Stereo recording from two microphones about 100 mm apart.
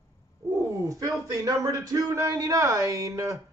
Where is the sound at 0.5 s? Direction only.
35° right (ahead or behind).